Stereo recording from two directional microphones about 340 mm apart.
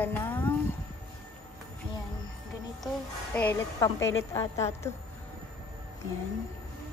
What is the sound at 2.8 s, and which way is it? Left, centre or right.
A woman's voice, centre.